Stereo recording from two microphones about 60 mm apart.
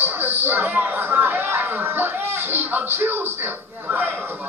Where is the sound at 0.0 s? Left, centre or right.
Right.